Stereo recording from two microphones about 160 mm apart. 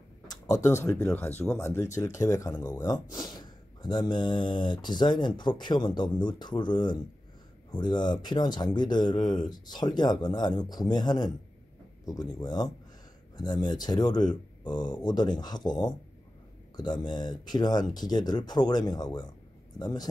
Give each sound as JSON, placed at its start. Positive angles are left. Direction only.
{"t": 0.3, "sound": "speech", "side_deg": 20}